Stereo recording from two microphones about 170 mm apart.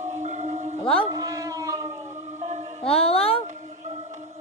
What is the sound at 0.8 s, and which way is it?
Speech, 30° left (ahead or behind).